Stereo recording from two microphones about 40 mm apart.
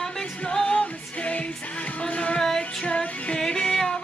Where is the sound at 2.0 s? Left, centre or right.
Left.